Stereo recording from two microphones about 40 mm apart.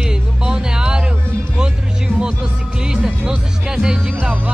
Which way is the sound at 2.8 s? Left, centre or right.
Centre.